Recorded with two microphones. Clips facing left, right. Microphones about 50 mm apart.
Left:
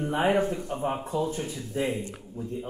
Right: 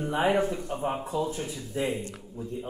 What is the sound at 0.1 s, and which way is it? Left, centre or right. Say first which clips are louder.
Speech: even; left.